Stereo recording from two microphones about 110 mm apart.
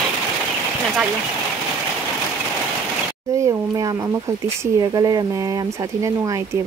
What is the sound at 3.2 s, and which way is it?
A woman's voice, 30° right (ahead or behind).